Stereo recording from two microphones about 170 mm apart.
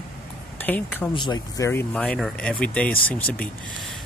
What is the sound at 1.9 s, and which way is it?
Speech, 5° left (ahead or behind).